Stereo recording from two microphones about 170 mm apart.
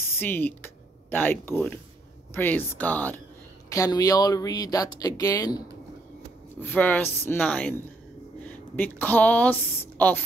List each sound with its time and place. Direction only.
0.2 s speech: 10° left (ahead or behind)
3.7 s speech: 20° left (ahead or behind)
6.6 s a woman's voice: 10° left (ahead or behind)